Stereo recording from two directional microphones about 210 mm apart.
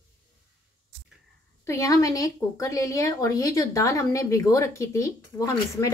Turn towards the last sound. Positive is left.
turn(degrees=15)  # may be behind; listen again after turning